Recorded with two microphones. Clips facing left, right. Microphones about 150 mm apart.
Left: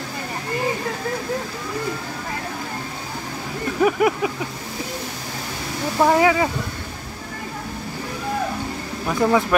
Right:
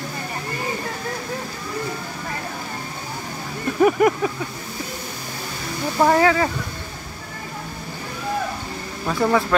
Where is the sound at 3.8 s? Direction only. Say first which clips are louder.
Right 2 dB; 5° left (ahead or behind).